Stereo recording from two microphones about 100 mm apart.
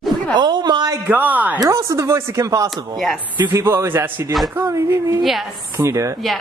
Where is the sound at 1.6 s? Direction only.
30° right (ahead or behind).